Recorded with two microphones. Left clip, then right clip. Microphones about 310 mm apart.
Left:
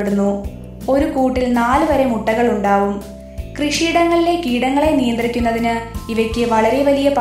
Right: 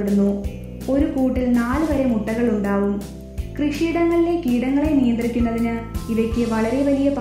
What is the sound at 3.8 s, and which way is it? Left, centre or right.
A woman's voice, centre.